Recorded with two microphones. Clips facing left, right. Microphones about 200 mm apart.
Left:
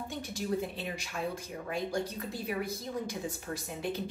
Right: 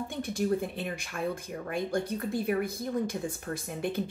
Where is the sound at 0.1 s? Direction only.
55° right (ahead or behind).